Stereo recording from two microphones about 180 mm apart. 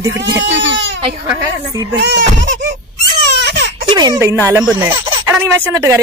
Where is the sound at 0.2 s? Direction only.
80° right.